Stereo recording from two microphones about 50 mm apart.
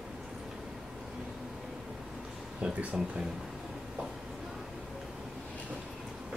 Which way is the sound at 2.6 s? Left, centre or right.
Centre.